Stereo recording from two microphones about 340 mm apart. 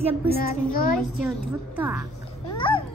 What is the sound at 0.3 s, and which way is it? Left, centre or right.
Speech, left.